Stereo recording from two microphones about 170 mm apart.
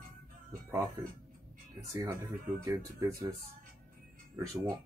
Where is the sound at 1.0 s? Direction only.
15° right (ahead or behind).